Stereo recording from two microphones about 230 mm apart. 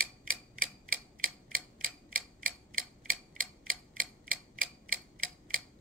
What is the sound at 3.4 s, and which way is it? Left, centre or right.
Clock, right.